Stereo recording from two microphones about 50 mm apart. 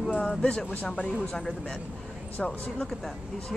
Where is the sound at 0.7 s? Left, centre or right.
Left.